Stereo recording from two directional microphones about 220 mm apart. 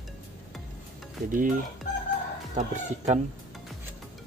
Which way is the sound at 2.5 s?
35° right (ahead or behind).